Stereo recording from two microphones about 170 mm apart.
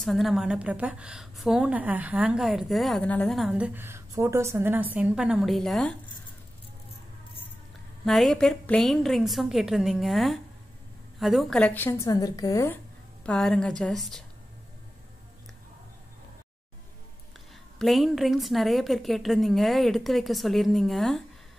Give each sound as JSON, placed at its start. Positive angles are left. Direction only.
{"t": 0.0, "sound": "a woman's voice", "side_deg": 0}
{"t": 8.0, "sound": "a woman's voice", "side_deg": 0}
{"t": 13.2, "sound": "a woman's voice", "side_deg": 5}
{"t": 17.7, "sound": "a woman's voice", "side_deg": 0}